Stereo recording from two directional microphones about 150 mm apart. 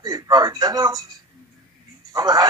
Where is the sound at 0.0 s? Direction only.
25° right (ahead or behind).